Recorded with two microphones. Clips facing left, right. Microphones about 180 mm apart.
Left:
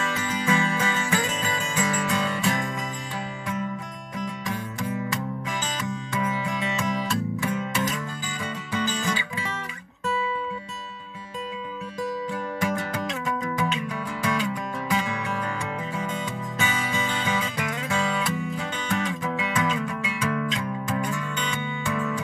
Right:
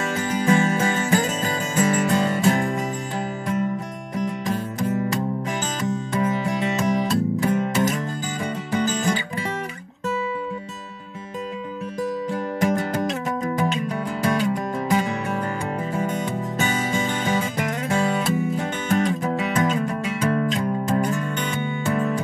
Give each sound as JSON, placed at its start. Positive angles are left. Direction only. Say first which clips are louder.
{"t": 0.0, "sound": "music", "louder": "right 5 dB", "side_deg": -50}
{"t": 4.5, "sound": "music", "louder": "right 5 dB", "side_deg": -40}
{"t": 12.5, "sound": "music", "louder": "right 7 dB", "side_deg": -40}